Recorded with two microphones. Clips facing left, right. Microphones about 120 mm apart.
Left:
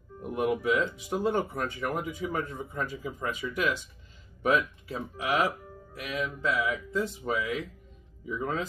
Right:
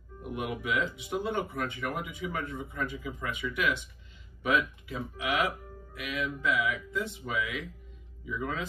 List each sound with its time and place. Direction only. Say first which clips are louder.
0.3 s speech: left 6 dB; 35° left (ahead or behind)